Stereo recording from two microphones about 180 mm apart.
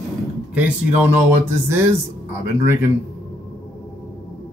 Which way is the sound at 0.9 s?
10° right (ahead or behind).